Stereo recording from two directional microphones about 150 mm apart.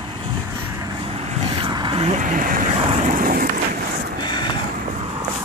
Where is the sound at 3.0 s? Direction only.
65° right (ahead or behind).